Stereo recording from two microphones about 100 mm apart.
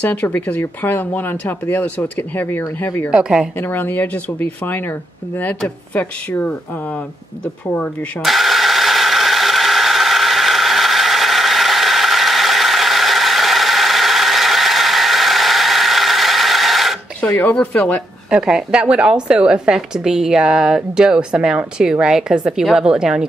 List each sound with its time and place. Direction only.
0.0 s speech: 15° left (ahead or behind)
3.1 s a woman's voice: 10° right (ahead or behind)
3.5 s speech: 20° left (ahead or behind)
5.9 s speech: 15° left (ahead or behind)
8.2 s a sound: centre (ahead or behind)
17.4 s speech: 15° left (ahead or behind)
18.3 s a woman's voice: 5° right (ahead or behind)